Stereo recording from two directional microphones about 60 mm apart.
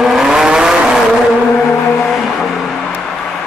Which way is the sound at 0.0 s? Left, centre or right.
Centre.